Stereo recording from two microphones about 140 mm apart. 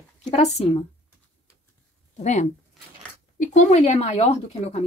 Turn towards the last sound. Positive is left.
turn(degrees=45)  # may be behind; listen again after turning